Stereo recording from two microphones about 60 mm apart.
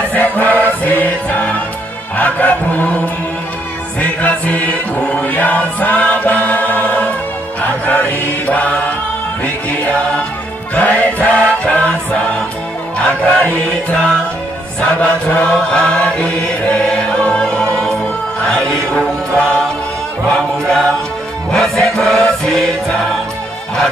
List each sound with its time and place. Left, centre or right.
0.1 s music: left
2.1 s choir: left
4.0 s music: left
7.6 s choir: left
9.4 s music: left
13.0 s chant: left
21.5 s music: centre